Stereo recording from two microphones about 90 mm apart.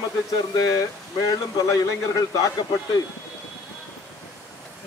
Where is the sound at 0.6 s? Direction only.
40° left (ahead or behind).